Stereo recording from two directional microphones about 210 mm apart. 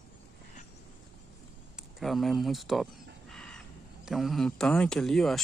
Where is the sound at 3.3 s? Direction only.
5° left (ahead or behind).